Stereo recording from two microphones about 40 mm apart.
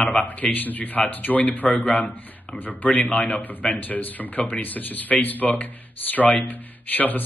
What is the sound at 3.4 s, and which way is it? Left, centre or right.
Speech, left.